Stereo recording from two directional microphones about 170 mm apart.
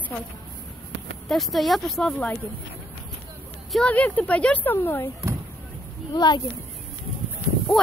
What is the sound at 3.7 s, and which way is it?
Speech, 10° left (ahead or behind).